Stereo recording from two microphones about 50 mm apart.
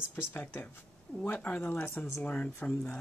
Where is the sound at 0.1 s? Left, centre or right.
Left.